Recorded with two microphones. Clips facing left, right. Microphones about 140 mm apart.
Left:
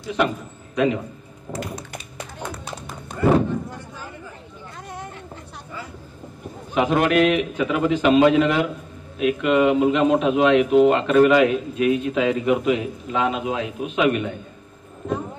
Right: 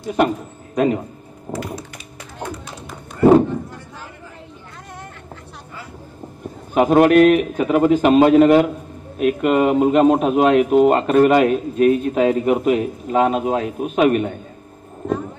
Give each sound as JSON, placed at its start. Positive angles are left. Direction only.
{"t": 0.0, "sound": "a man's voice", "side_deg": -45}
{"t": 6.7, "sound": "a man's voice", "side_deg": -45}